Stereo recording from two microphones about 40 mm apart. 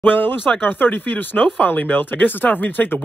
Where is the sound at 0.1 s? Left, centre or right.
Left.